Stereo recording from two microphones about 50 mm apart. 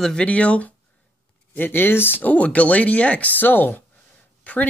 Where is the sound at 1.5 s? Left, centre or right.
Left.